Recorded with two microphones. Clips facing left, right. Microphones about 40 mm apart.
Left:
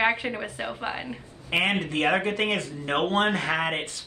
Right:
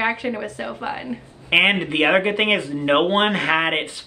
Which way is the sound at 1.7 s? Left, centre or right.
Right.